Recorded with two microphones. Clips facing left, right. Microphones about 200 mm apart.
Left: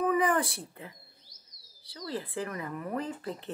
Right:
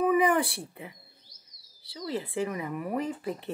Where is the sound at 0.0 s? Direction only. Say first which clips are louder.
Right 3 dB; 15° right (ahead or behind).